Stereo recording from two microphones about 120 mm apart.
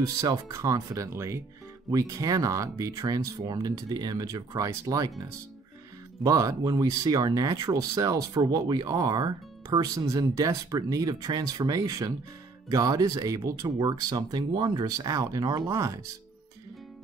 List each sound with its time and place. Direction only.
0.0 s speech: 25° right (ahead or behind)
6.2 s speech: 30° right (ahead or behind)